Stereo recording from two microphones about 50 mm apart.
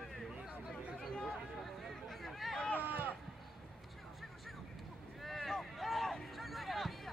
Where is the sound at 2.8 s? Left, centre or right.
Right.